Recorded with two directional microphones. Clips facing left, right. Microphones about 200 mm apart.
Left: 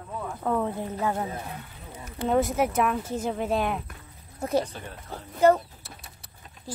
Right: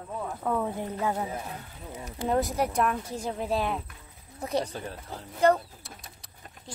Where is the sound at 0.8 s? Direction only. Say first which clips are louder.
Left 1 dB; 10° right (ahead or behind).